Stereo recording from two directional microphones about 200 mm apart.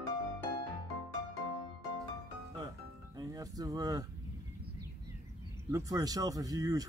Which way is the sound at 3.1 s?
20° right (ahead or behind).